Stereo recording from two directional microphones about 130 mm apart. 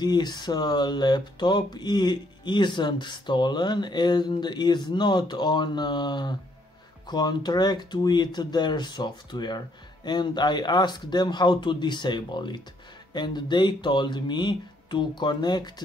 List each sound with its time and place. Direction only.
0.0 s speech: 35° left (ahead or behind)